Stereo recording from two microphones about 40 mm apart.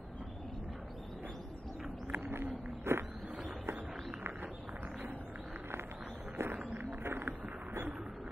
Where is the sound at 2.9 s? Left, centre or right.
Right.